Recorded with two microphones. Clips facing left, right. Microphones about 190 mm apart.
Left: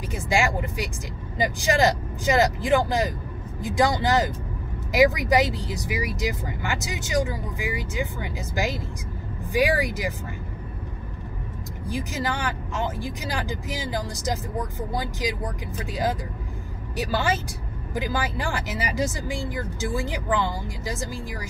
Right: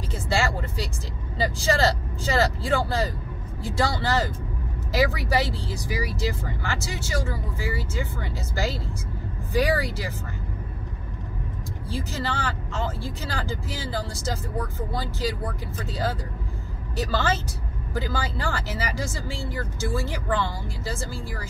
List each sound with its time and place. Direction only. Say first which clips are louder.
0.1 s speech: left 2 dB; 15° left (ahead or behind)
11.9 s speech: left 2 dB; 15° left (ahead or behind)